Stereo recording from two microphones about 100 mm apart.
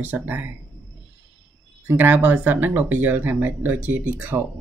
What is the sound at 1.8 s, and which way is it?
Speech, 20° right (ahead or behind).